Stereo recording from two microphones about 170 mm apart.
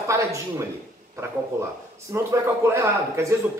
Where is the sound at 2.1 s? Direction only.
15° right (ahead or behind).